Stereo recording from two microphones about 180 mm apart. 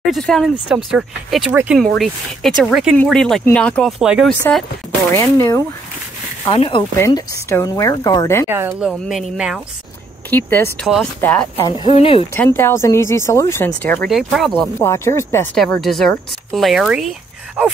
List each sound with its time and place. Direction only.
0.0 s speech: centre (ahead or behind)
4.0 s speech: 5° right (ahead or behind)
4.3 s speech: 5° left (ahead or behind)
6.4 s speech: 30° left (ahead or behind)
8.5 s speech: 10° right (ahead or behind)
10.3 s speech: 10° left (ahead or behind)
11.6 s speech: 30° left (ahead or behind)
12.4 s speech: 15° left (ahead or behind)
14.8 s speech: 15° left (ahead or behind)
15.5 s speech: 5° left (ahead or behind)